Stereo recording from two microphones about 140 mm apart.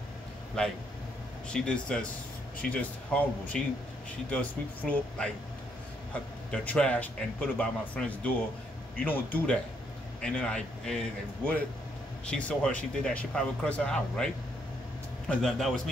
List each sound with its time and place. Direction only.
0.6 s speech: 5° left (ahead or behind)
6.5 s a man's voice: 10° left (ahead or behind)